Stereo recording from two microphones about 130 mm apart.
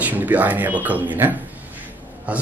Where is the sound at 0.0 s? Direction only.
10° right (ahead or behind).